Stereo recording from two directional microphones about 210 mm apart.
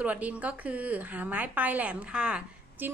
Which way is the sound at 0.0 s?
5° right (ahead or behind).